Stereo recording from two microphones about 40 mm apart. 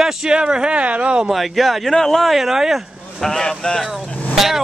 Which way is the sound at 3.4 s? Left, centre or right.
Centre.